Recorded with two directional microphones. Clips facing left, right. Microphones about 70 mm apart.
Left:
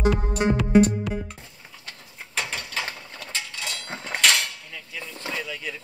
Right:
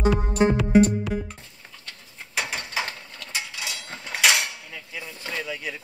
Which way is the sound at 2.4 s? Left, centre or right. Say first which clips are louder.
Right 3 dB; centre.